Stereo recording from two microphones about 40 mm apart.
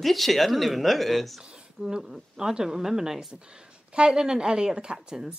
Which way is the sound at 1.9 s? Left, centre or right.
Centre.